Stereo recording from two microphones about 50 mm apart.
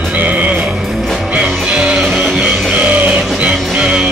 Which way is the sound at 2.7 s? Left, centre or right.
Right.